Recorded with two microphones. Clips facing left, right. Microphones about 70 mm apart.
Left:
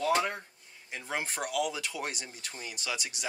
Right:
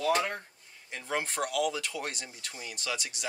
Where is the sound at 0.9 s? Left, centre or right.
Centre.